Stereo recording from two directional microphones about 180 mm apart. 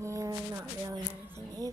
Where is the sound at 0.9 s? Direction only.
20° right (ahead or behind).